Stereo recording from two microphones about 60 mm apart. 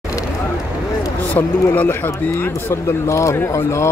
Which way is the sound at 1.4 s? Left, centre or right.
Left.